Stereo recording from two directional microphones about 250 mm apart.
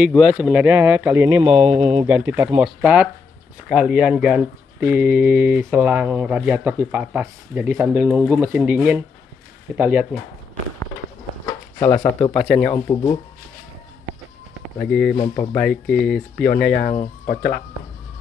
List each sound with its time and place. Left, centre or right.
0.0 s speech: centre
1.4 s speech: right
2.0 s speech: centre
11.8 s speech: centre
12.7 s speech: centre
14.9 s speech: centre
15.1 s speech: centre
15.6 s speech: centre
16.8 s speech: left